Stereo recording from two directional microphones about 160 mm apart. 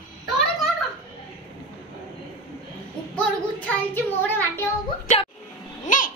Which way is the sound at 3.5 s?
10° left (ahead or behind).